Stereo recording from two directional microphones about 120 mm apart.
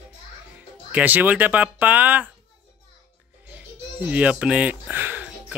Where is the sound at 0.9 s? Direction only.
15° right (ahead or behind).